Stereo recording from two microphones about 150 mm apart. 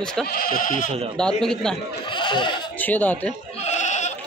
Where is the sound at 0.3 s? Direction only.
75° left (ahead or behind).